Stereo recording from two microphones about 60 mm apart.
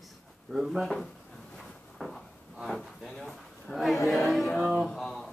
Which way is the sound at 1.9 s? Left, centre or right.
Centre.